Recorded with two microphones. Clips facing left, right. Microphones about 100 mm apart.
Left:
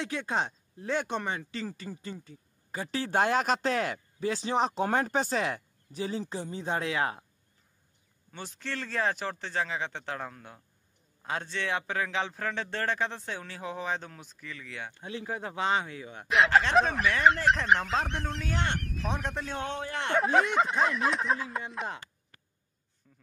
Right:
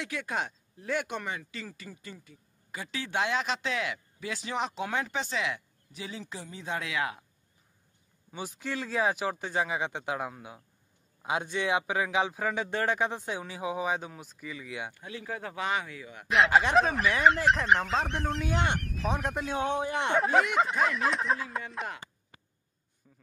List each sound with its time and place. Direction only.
0.0 s speech: 30° left (ahead or behind)
8.3 s speech: 10° right (ahead or behind)
15.0 s speech: 25° left (ahead or behind)
16.3 s speech: centre (ahead or behind)
18.4 s speech: 15° right (ahead or behind)
18.8 s speech: centre (ahead or behind); by 20.2 s 15° right (ahead or behind)
20.2 s speech: centre (ahead or behind)